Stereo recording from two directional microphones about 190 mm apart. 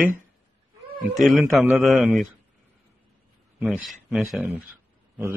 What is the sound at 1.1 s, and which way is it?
A man's voice, centre (ahead or behind).